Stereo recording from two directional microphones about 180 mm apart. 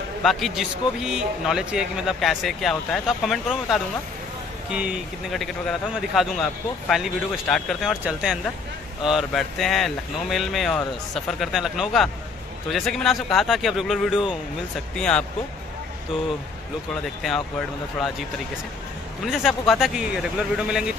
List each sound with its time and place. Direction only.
0.2 s a man's voice: centre (ahead or behind)
17.2 s a man's voice: centre (ahead or behind)
19.2 s a man's voice: centre (ahead or behind)